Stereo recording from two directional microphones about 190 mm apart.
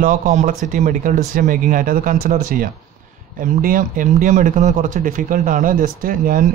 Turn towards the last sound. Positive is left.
turn(degrees=-45)  # may be behind; listen again after turning